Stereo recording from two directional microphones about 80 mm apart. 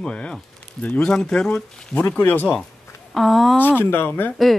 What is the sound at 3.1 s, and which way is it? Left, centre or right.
Speech, centre.